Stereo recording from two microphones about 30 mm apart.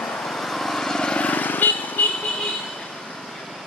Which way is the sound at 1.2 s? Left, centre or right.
Left.